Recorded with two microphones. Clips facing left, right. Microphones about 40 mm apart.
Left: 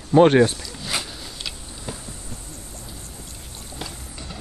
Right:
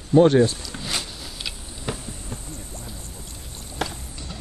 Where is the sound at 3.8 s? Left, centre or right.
Right.